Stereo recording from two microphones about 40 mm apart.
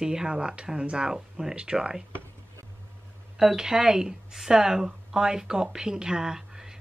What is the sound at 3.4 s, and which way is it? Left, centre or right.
Speech, centre.